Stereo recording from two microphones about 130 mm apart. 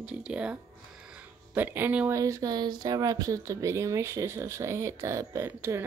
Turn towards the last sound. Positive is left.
turn(degrees=-20)  # may be behind; listen again after turning